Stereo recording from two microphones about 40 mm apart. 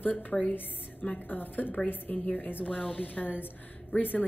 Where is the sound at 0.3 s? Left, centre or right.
Centre.